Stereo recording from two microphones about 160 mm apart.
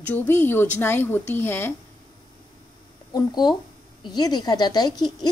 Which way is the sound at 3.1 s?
25° left (ahead or behind).